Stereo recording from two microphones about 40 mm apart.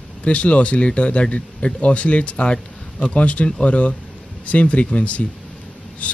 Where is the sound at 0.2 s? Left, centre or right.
Left.